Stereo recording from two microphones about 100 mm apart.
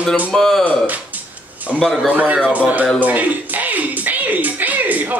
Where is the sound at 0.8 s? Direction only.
15° right (ahead or behind).